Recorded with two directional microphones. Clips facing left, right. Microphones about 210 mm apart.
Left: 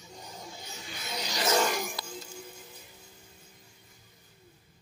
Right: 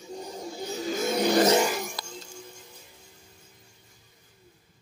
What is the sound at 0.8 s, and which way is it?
Vehicle, 45° right (ahead or behind).